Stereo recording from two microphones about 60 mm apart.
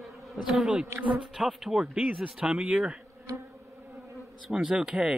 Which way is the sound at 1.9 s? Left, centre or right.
Right.